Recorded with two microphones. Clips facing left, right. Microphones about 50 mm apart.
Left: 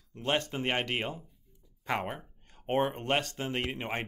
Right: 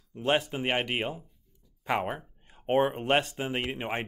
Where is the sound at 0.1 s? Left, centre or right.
Centre.